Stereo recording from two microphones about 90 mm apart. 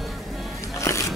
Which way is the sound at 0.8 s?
35° left (ahead or behind).